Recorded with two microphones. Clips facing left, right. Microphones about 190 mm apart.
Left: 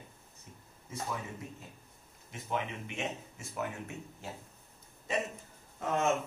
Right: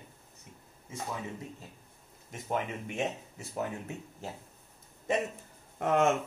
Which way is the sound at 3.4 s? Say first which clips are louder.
Right 3 dB; 40° right (ahead or behind).